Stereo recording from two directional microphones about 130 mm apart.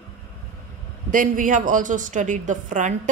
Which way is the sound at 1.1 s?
90° right.